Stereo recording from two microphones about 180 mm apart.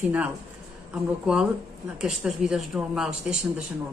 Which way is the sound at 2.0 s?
5° right (ahead or behind).